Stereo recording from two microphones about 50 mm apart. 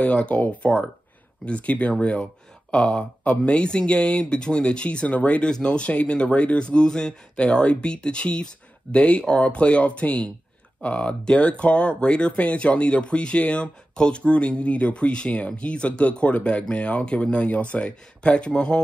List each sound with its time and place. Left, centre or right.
0.0 s speech: left